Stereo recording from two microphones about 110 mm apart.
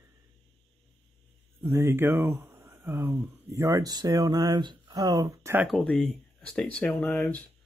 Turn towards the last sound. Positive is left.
turn(degrees=10)  # may be behind; listen again after turning